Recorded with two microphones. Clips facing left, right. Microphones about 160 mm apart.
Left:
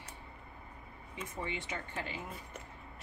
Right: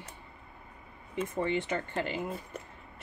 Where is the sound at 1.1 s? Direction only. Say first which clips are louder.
Right 10 dB; 60° right (ahead or behind).